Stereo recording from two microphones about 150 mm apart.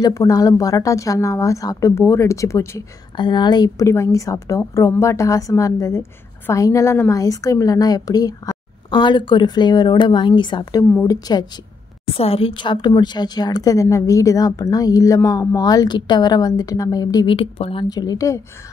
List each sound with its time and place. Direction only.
0.0 s a woman's voice: 25° left (ahead or behind)
3.2 s a woman's voice: 30° left (ahead or behind)
12.2 s a woman's voice: 40° left (ahead or behind)
17.8 s a woman's voice: 25° left (ahead or behind)